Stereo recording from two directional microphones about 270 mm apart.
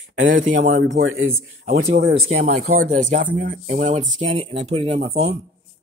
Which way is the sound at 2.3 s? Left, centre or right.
Right.